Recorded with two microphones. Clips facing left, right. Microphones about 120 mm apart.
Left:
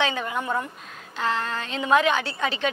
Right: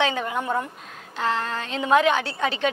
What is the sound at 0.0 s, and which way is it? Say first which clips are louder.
A woman's voice: right 2 dB; 45° right (ahead or behind).